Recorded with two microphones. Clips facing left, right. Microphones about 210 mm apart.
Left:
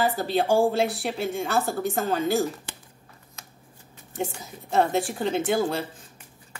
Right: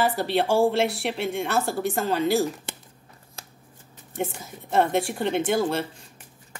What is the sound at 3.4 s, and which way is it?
Shuffling cards, 30° right (ahead or behind).